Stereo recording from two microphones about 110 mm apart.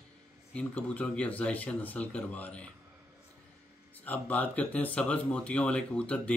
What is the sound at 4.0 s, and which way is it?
Speech, 15° left (ahead or behind).